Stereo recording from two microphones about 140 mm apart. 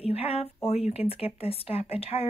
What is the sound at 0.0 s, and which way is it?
Speech, 45° left (ahead or behind).